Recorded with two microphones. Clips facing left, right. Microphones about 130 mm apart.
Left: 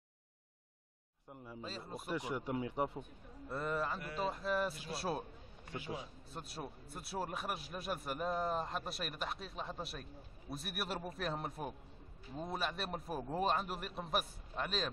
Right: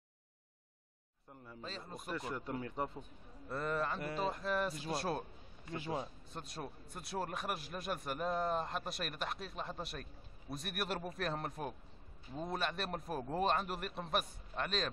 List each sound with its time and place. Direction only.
1.3 s speech: 10° left (ahead or behind)
4.0 s speech: 40° right (ahead or behind)
4.3 s a man's voice: 5° left (ahead or behind)
6.3 s a man's voice: 5° left (ahead or behind)